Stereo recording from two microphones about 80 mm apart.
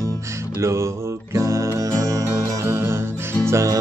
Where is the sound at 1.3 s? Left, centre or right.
Right.